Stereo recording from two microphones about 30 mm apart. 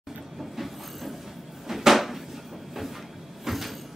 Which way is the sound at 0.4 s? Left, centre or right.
Centre.